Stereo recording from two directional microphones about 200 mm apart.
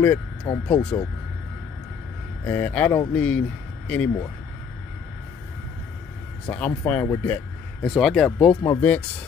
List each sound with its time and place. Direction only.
0.0 s speech: 10° left (ahead or behind)
2.4 s speech: 10° left (ahead or behind)
6.4 s speech: 10° left (ahead or behind)
7.8 s speech: centre (ahead or behind)